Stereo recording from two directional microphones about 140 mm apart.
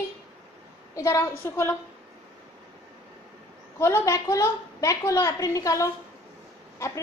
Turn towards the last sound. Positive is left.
turn(degrees=20)  # may be behind; listen again after turning